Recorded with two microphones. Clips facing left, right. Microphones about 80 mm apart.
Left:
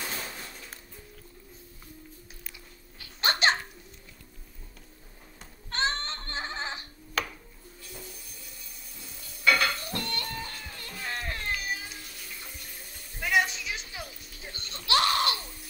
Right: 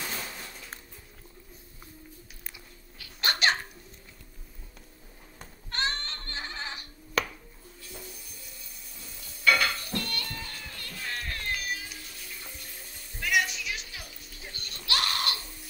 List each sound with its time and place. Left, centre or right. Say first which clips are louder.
3.0 s a sound: left 2 dB; left
5.7 s music: left 2 dB; left
9.4 s dishes: even; centre
13.2 s music: left 1 dB; left